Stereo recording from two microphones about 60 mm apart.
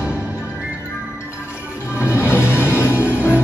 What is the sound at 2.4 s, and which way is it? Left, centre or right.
Music, left.